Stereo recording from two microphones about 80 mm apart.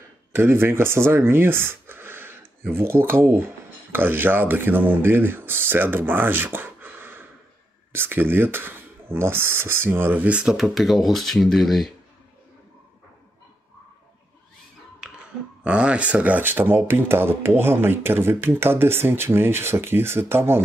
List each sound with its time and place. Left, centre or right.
0.3 s speech: right; by 11.9 s centre
15.0 s a sound: centre
15.6 s speech: centre; by 20.6 s right